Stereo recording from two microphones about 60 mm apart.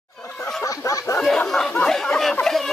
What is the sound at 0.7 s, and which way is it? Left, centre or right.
Snicker, left.